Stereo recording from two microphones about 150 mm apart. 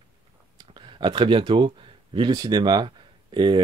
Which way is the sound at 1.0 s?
30° right (ahead or behind).